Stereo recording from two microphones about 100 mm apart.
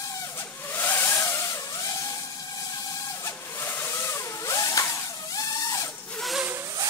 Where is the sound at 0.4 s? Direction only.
25° left (ahead or behind).